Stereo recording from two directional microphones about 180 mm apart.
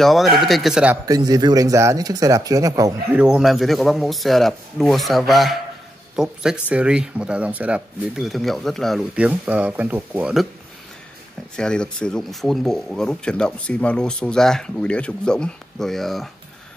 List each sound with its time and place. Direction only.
0.0 s speech: centre (ahead or behind)
1.0 s a man's voice: 20° right (ahead or behind)
3.2 s speech: 5° right (ahead or behind)
11.5 s speech: 5° left (ahead or behind)